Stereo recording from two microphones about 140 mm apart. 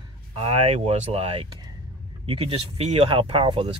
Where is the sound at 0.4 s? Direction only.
45° right (ahead or behind).